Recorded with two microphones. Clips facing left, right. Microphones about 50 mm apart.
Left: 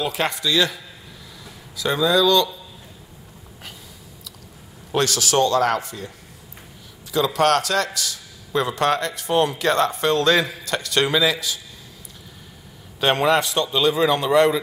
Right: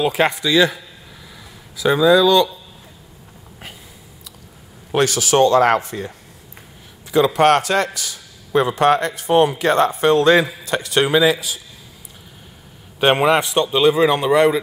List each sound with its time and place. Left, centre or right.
0.0 s a man's voice: centre
4.9 s a man's voice: centre; by 6.1 s right
7.1 s a man's voice: right
13.0 s a man's voice: right